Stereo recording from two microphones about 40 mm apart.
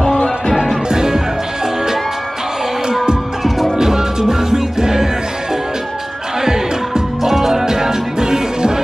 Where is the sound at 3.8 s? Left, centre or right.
Centre.